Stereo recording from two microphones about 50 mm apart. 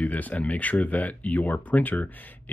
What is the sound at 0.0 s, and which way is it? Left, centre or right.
Speech, left.